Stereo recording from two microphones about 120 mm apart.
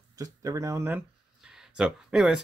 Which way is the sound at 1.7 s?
5° right (ahead or behind).